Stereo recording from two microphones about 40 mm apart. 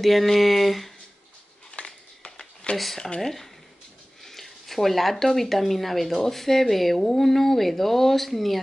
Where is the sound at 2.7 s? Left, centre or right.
Centre.